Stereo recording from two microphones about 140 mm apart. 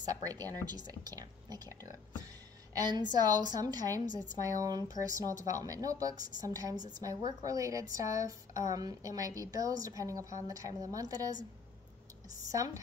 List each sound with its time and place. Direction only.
0.0 s a woman's voice: 25° right (ahead or behind)